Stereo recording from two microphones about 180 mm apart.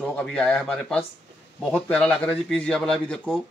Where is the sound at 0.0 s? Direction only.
5° left (ahead or behind).